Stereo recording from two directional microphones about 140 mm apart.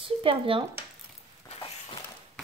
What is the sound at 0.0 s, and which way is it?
Speech, 40° right (ahead or behind).